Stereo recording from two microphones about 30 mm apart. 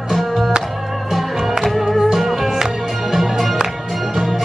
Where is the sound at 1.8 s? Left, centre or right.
Centre.